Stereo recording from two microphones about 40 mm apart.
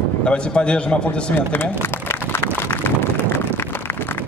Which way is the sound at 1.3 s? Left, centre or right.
Left.